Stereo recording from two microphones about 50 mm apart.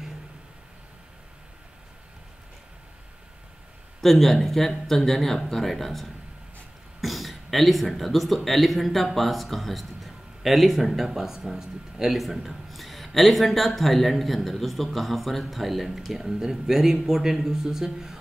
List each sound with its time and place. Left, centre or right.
4.0 s speech: centre